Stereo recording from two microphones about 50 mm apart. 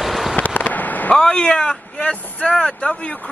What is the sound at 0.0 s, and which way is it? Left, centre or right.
Fireworks, centre.